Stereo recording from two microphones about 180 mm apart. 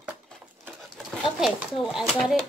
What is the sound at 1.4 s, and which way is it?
Speech, 5° right (ahead or behind).